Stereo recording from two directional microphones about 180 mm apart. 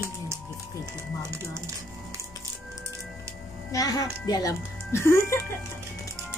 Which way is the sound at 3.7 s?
20° left (ahead or behind).